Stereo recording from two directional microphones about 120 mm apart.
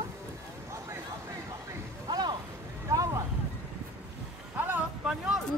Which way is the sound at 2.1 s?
35° right (ahead or behind).